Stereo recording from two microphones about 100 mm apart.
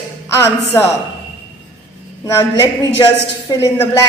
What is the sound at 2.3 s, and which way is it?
A woman's voice, 35° left (ahead or behind).